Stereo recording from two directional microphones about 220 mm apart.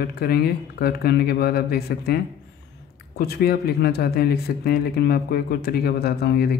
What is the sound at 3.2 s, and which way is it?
A man's voice, 45° left (ahead or behind).